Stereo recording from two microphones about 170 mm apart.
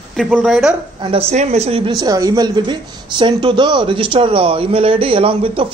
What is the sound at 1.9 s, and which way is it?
A woman's voice, 20° right (ahead or behind).